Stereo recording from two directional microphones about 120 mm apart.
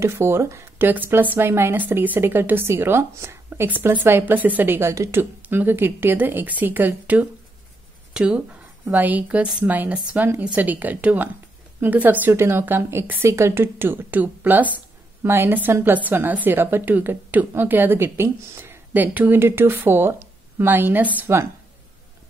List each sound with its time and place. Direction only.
0.0 s speech: 20° right (ahead or behind)